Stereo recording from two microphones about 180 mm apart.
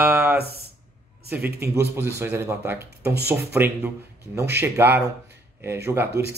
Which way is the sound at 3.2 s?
10° right (ahead or behind).